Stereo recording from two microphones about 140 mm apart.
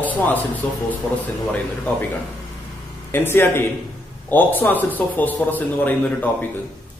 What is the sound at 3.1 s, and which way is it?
A man's voice, 15° left (ahead or behind).